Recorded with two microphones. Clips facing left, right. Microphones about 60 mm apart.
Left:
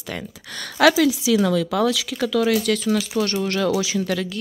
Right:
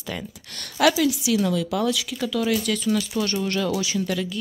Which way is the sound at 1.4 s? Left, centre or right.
Left.